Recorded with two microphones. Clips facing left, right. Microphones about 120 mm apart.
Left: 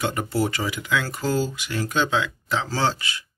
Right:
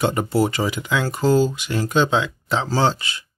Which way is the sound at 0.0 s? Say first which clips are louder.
Right 5 dB; 25° right (ahead or behind).